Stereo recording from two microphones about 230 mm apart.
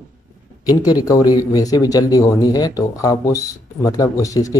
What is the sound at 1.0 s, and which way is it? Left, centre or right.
Speech, centre.